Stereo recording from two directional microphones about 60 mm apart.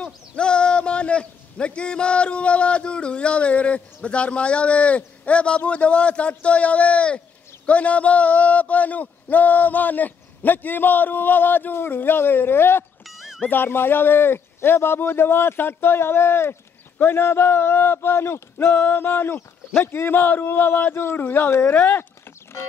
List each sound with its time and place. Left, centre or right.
0.0 s a man's voice: centre; by 12.8 s left
13.0 s a sound: centre
13.5 s a man's voice: left